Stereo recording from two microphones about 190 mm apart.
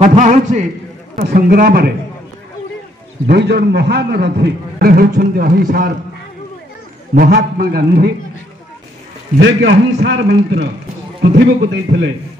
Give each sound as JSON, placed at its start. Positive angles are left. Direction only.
{"t": 0.0, "sound": "a man's voice", "side_deg": -40}
{"t": 1.1, "sound": "a man's voice", "side_deg": -55}
{"t": 3.3, "sound": "a man's voice", "side_deg": -60}
{"t": 7.2, "sound": "a man's voice", "side_deg": -50}
{"t": 9.4, "sound": "a man's voice", "side_deg": -65}